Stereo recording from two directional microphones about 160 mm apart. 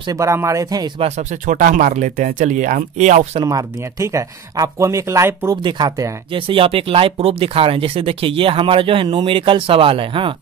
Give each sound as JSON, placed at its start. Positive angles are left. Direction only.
{"t": 0.0, "sound": "speech", "side_deg": -20}
{"t": 1.0, "sound": "speech", "side_deg": -45}
{"t": 3.4, "sound": "speech", "side_deg": -20}